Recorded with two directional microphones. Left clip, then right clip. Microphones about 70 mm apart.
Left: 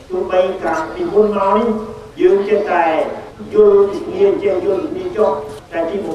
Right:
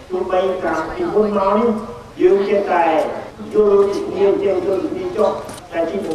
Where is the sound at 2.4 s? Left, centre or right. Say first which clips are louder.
Left 1 dB; centre.